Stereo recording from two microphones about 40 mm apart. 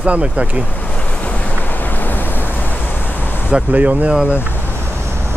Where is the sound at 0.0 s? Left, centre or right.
Right.